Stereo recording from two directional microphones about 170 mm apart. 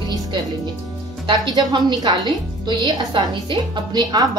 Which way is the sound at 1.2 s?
25° right (ahead or behind).